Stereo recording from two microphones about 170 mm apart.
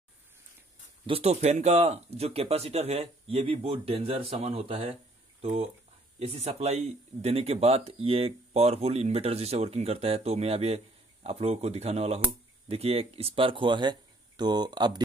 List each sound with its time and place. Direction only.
1.0 s speech: 35° right (ahead or behind)